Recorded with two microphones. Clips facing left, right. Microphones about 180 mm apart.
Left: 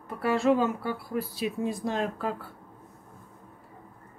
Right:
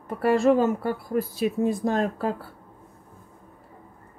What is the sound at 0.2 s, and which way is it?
Speech, 50° right (ahead or behind).